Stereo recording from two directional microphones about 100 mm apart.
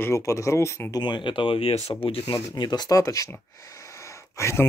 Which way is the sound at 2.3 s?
40° left (ahead or behind).